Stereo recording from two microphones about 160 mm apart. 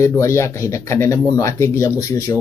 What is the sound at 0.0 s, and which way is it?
Speech, 20° left (ahead or behind).